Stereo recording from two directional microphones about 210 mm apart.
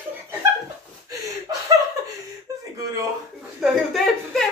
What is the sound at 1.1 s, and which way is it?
Snicker, 15° right (ahead or behind).